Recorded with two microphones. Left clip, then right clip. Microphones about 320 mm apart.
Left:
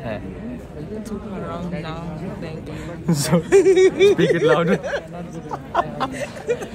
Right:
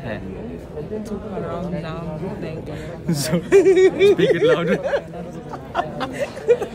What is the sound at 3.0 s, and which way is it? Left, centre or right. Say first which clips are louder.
Speech: left 3 dB; centre.